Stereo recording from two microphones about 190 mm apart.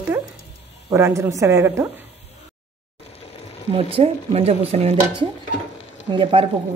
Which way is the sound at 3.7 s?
30° right (ahead or behind).